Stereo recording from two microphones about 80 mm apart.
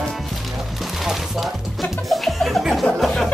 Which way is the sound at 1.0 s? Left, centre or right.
Centre.